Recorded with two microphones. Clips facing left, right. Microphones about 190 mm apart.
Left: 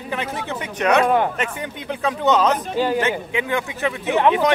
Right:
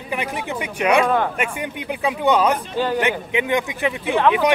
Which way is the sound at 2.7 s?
10° left (ahead or behind).